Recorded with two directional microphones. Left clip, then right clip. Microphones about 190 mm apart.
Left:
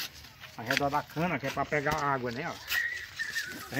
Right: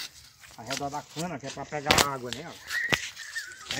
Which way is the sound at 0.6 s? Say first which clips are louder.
Left 5 dB; centre (ahead or behind).